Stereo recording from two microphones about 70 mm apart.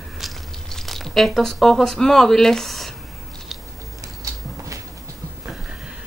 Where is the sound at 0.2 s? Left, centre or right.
Centre.